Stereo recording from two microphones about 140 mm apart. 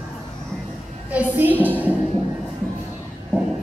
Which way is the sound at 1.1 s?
10° right (ahead or behind).